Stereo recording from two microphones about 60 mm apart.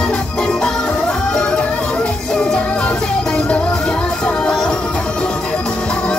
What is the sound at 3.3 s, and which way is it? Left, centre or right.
Music, centre.